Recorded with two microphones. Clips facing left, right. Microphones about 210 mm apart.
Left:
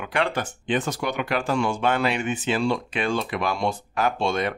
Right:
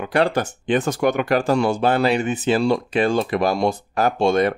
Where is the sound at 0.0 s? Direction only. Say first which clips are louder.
Right 6 dB; 40° right (ahead or behind).